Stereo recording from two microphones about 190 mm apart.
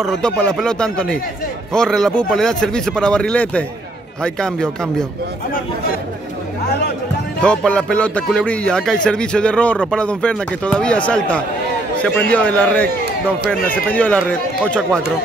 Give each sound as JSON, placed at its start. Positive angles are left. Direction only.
{"t": 0.0, "sound": "speech", "side_deg": 5}
{"t": 7.4, "sound": "speech", "side_deg": 5}